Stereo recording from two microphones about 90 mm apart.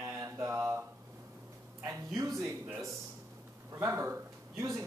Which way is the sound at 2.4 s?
35° right (ahead or behind).